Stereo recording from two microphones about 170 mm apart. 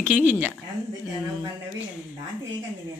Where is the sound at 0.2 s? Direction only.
10° right (ahead or behind).